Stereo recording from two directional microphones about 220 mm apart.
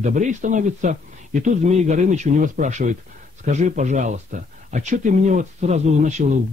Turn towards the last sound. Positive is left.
turn(degrees=-30)  # may be behind; listen again after turning